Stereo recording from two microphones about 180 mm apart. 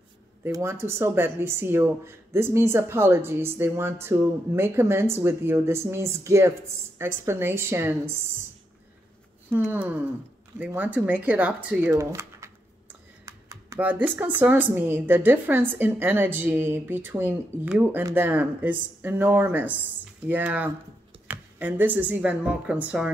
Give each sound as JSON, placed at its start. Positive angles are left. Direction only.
{"t": 0.4, "sound": "speech", "side_deg": -15}
{"t": 9.7, "sound": "speech", "side_deg": -10}